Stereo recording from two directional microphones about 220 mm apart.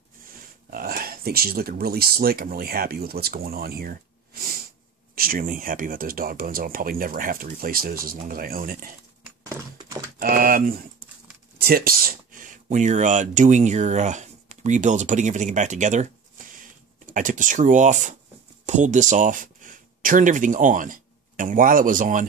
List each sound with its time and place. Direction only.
0.3 s speech: 40° right (ahead or behind)
9.4 s a sound: 15° right (ahead or behind)
10.1 s speech: 40° right (ahead or behind)